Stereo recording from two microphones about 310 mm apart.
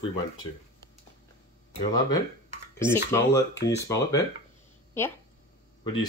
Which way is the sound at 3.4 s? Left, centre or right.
Left.